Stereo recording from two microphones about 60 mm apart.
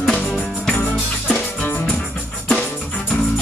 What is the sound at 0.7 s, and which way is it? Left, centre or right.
Music, left.